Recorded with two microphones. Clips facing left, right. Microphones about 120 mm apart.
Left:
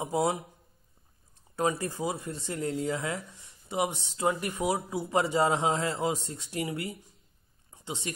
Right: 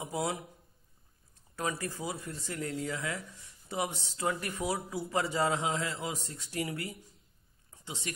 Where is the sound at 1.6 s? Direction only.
25° left (ahead or behind).